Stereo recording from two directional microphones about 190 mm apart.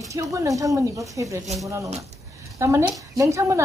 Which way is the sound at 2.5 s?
15° right (ahead or behind).